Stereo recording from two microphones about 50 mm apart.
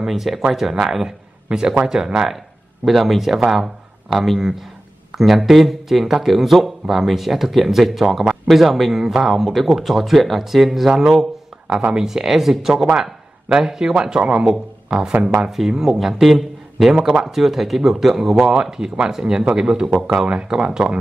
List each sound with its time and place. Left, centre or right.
0.0 s speech: centre
18.5 s speech: centre